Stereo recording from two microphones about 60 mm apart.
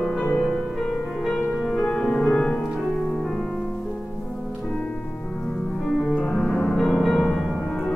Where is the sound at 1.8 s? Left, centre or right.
Centre.